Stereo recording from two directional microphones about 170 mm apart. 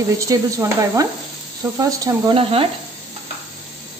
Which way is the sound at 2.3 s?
35° right (ahead or behind).